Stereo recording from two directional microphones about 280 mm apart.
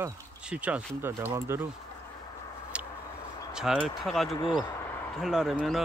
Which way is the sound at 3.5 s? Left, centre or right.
Centre.